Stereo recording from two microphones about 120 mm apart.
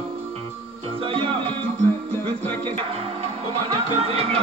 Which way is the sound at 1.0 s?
50° right (ahead or behind).